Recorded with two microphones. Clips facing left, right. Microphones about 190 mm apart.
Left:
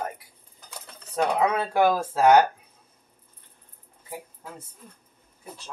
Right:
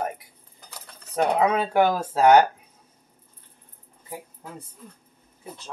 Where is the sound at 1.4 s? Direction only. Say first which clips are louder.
Right 1 dB; 20° right (ahead or behind).